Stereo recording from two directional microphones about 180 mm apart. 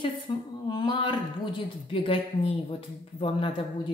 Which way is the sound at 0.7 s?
25° left (ahead or behind).